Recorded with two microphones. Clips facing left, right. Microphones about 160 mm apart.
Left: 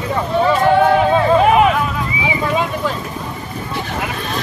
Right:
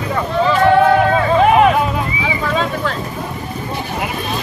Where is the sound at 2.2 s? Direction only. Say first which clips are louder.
Left 2 dB; 15° left (ahead or behind).